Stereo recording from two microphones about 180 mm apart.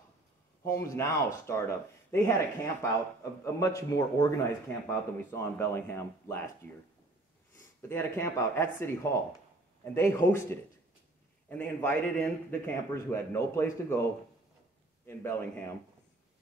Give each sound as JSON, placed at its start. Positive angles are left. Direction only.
{"t": 0.7, "sound": "a man's voice", "side_deg": 15}
{"t": 7.9, "sound": "a man's voice", "side_deg": 15}
{"t": 11.4, "sound": "a man's voice", "side_deg": 10}
{"t": 15.0, "sound": "a man's voice", "side_deg": 15}